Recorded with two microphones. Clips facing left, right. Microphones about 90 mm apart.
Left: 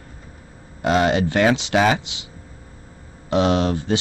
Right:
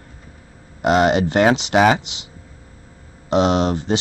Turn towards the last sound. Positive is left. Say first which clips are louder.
# right 1 dB
turn(degrees=-25)  # may be behind; listen again after turning